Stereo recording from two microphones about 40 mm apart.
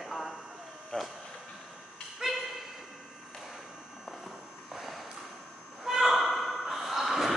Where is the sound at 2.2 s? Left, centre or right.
Centre.